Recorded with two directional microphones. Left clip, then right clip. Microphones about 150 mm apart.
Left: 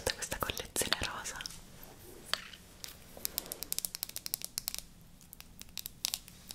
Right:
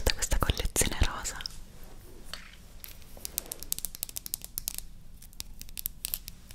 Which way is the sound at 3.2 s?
30° right (ahead or behind).